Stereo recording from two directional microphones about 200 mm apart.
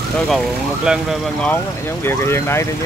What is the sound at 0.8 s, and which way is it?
Speech, 5° right (ahead or behind).